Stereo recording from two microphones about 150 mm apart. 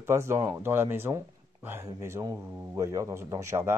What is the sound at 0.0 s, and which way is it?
Mantra, 20° right (ahead or behind).